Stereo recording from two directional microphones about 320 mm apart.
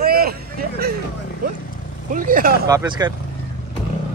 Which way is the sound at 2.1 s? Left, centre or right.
Right.